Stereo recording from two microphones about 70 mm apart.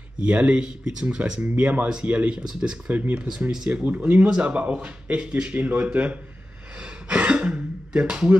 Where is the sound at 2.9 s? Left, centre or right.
Right.